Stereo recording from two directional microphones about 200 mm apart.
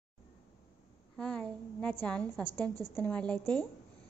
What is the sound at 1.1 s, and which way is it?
A woman's voice, 5° left (ahead or behind).